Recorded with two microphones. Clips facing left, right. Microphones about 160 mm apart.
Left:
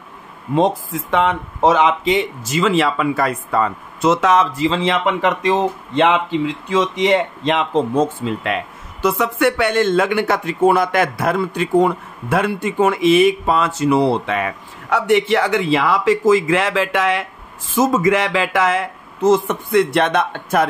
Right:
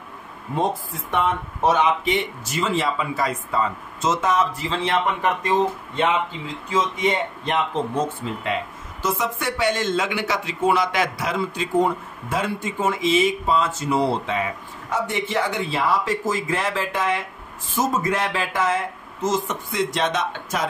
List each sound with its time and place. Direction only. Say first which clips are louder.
0.6 s speech: left 7 dB; 90° left; by 20.6 s 60° left (ahead or behind)